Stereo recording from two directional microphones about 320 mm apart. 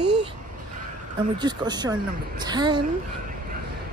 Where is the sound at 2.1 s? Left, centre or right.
Right.